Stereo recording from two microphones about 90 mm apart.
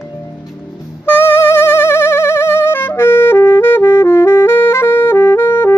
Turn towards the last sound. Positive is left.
turn(degrees=25)  # may be behind; listen again after turning